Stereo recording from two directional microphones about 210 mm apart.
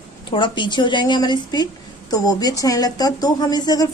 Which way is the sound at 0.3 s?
20° left (ahead or behind).